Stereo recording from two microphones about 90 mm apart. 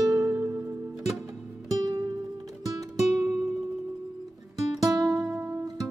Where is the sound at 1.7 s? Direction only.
45° right (ahead or behind).